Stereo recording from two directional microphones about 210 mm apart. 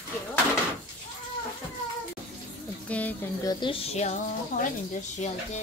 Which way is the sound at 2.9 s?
5° left (ahead or behind).